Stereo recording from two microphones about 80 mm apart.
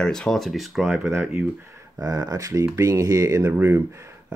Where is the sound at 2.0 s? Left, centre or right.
Right.